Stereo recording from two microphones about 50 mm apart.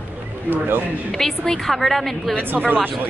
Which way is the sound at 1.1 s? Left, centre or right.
Centre.